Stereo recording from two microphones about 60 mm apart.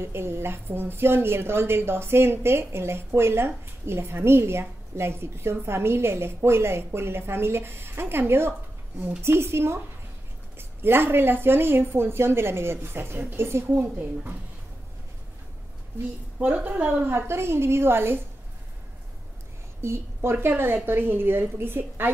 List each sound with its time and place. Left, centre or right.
0.0 s a woman's voice: right
16.3 s a woman's voice: right
17.1 s a woman's voice: right
19.8 s a woman's voice: right